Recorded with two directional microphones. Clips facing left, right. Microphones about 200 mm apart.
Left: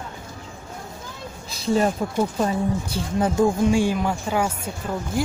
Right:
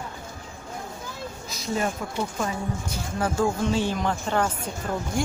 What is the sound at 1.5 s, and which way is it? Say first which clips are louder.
A woman's voice: left 7 dB; 30° left (ahead or behind).